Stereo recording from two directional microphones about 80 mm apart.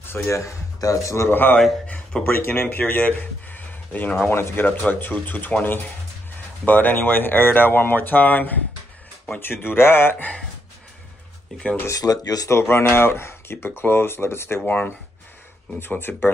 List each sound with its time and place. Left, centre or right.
0.0 s speech: left
1.3 s speech: left
11.9 s speech: left
12.4 s speech: left
15.8 s speech: left